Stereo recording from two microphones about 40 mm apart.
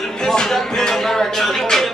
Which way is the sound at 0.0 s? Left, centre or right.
Centre.